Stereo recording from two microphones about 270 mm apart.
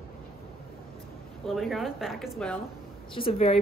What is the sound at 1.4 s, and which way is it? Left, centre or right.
A woman's voice, centre.